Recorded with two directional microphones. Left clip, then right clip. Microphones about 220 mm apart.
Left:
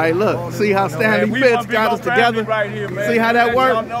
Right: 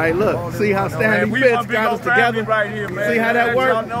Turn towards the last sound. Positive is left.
turn(degrees=20)  # may be behind; listen again after turning